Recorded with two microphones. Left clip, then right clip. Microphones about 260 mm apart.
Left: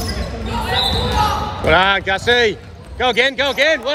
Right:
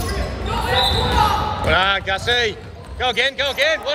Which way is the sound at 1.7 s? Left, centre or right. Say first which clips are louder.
Left 5 dB; left.